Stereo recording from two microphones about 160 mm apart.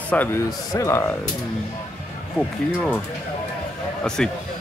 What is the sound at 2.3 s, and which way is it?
Speech, 5° left (ahead or behind).